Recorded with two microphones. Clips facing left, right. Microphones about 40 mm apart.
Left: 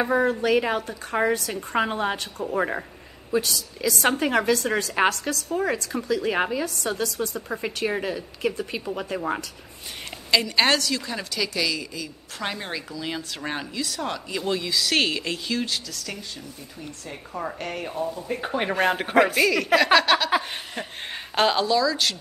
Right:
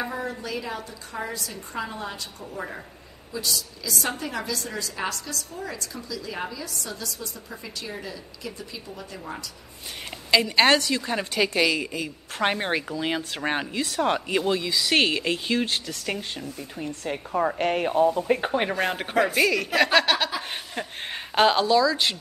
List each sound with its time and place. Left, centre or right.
0.0 s a woman's voice: left
2.5 s a woman's voice: left
10.3 s a woman's voice: centre; by 14.4 s right
14.4 s a woman's voice: centre; by 17.9 s right
17.9 s speech: right
18.7 s speech: centre
19.3 s speech: centre